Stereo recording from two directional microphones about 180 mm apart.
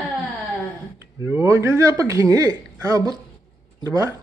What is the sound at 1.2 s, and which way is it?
Speech, 15° right (ahead or behind).